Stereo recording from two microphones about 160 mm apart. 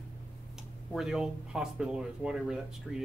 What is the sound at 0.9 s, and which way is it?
Speech, 5° right (ahead or behind).